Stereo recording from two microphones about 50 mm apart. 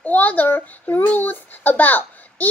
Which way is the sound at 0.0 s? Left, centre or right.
Left.